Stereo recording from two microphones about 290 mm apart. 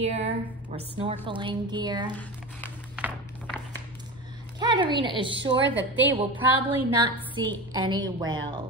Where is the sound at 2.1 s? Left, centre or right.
Centre.